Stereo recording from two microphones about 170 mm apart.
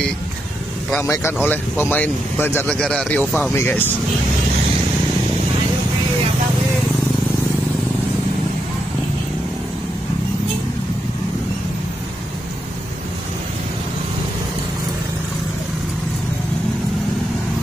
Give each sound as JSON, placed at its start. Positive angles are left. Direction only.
{"t": 1.0, "sound": "speech", "side_deg": 15}
{"t": 3.5, "sound": "speech", "side_deg": 15}